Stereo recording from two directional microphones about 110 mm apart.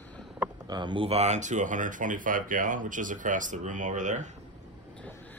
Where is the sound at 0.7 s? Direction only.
45° right (ahead or behind).